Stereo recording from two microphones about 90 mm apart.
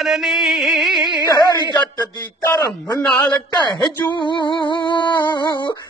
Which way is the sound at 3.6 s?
55° left (ahead or behind).